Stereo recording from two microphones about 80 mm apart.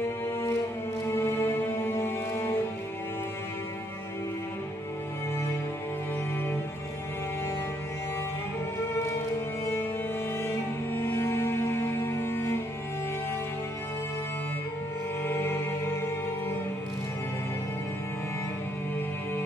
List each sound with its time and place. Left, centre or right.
1.0 s music: left
10.4 s music: left
15.2 s music: left